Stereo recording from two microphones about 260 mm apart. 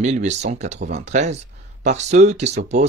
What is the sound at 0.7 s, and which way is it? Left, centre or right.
Speech, right.